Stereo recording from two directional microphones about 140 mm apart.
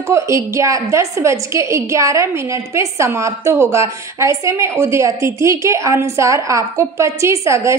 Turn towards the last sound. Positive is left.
turn(degrees=-20)  # may be behind; listen again after turning